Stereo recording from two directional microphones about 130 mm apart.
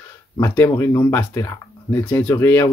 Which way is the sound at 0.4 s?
20° left (ahead or behind).